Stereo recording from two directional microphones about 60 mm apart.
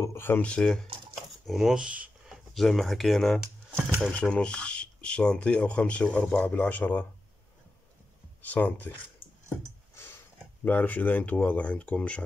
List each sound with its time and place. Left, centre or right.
0.1 s a sound: left
0.4 s speech: centre
1.4 s speech: centre
1.8 s a sound: centre
2.5 s speech: centre
4.1 s speech: centre
8.4 s speech: left
9.5 s a sound: left
10.6 s speech: left